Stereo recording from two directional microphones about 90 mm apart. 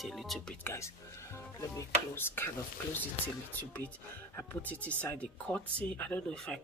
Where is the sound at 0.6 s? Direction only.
30° left (ahead or behind).